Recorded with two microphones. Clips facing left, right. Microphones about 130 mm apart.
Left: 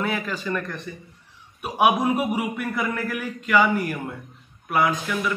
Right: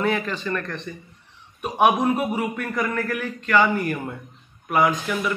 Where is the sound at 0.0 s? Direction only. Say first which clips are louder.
Right 3 dB; 5° left (ahead or behind).